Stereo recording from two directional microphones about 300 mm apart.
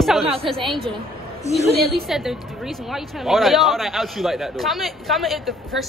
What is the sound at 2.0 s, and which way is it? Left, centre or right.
Speech, centre.